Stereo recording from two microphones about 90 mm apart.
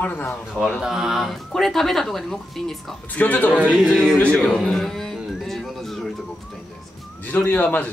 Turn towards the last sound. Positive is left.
turn(degrees=20)  # may be behind; listen again after turning